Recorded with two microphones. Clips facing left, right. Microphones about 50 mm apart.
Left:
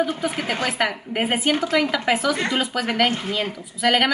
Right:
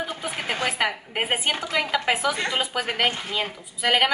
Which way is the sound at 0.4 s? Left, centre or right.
Centre.